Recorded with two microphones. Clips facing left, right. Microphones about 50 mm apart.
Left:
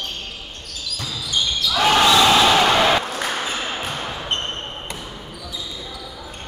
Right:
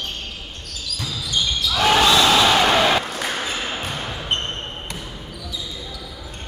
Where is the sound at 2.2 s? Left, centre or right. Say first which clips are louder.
Left 1 dB; centre.